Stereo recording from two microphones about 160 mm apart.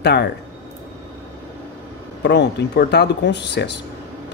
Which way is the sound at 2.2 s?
90° left.